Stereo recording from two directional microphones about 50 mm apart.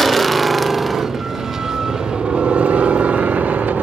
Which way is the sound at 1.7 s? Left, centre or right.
Centre.